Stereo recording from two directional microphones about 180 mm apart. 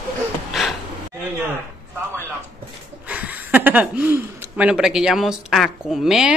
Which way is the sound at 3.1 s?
10° right (ahead or behind).